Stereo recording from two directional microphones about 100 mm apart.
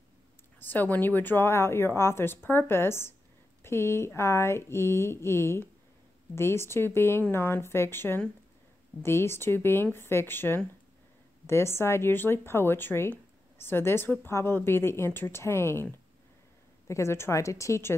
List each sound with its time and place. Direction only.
0.6 s a woman's voice: 20° left (ahead or behind)